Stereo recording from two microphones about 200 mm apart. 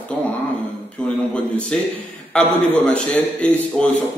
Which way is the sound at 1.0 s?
5° left (ahead or behind).